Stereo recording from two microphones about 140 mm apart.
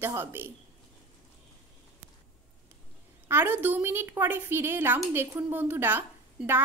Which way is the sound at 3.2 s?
15° right (ahead or behind).